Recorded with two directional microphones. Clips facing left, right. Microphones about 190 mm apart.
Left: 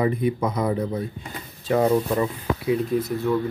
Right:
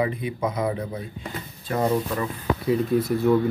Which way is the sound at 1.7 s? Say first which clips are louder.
Left 4 dB; 20° left (ahead or behind).